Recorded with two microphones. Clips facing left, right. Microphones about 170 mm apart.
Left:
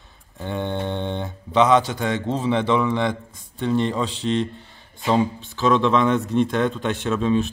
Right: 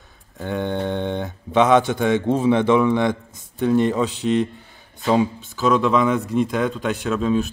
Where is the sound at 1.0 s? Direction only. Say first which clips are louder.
Right 2 dB; 15° right (ahead or behind).